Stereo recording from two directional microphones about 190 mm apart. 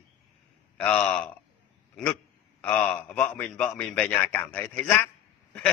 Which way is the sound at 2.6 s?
10° left (ahead or behind).